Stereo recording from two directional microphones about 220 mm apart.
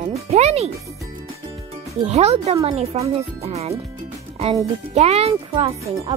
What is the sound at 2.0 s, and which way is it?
Speech, 30° right (ahead or behind).